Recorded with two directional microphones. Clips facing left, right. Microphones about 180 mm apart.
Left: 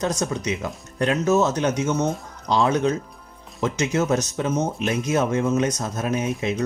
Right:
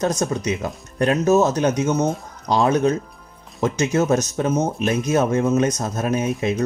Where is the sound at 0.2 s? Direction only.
40° right (ahead or behind).